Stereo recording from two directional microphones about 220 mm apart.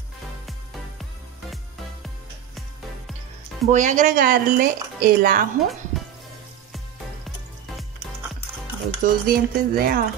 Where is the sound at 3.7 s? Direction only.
35° right (ahead or behind).